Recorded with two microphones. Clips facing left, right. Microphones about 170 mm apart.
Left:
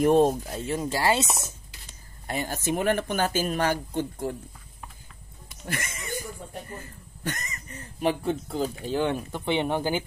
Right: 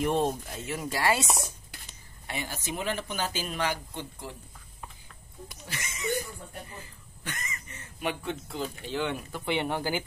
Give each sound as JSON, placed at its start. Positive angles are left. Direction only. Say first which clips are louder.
{"t": 0.0, "sound": "speech", "louder": "left 7 dB", "side_deg": 40}
{"t": 2.2, "sound": "speech", "louder": "left 7 dB", "side_deg": 45}
{"t": 5.7, "sound": "speech", "louder": "left 8 dB", "side_deg": 55}
{"t": 7.2, "sound": "speech", "louder": "left 6 dB", "side_deg": 40}
{"t": 9.3, "sound": "speech", "louder": "left 4 dB", "side_deg": 20}